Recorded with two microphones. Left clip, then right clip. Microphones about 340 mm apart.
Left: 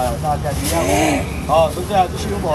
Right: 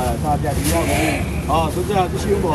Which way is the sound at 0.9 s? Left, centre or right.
Centre.